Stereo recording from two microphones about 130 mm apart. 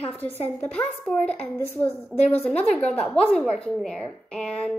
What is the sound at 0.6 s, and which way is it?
A woman's voice, 10° left (ahead or behind).